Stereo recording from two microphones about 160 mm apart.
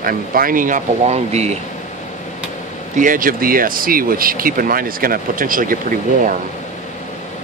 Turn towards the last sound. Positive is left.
turn(degrees=-60)  # may be behind; listen again after turning